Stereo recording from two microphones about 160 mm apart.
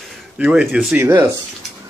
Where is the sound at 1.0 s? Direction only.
15° right (ahead or behind).